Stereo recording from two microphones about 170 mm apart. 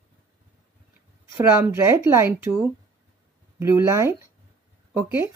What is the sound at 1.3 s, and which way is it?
Speech, 15° right (ahead or behind).